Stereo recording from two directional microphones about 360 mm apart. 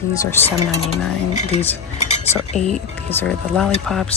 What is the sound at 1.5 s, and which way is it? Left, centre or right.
Cutlery, centre.